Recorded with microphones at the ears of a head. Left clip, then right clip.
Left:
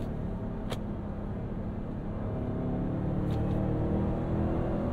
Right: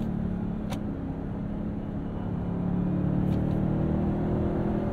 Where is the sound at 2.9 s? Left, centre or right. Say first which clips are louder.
Right 4 dB; right.